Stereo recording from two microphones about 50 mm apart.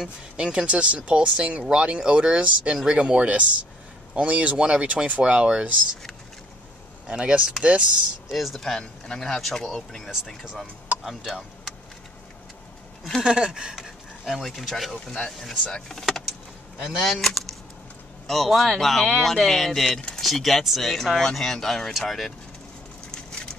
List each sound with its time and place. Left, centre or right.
0.0 s speech: centre
7.1 s speech: right
8.3 s speech: centre
8.6 s speech: centre
11.1 s speech: centre
13.2 s a sound: centre
14.2 s speech: centre
23.1 s a sound: centre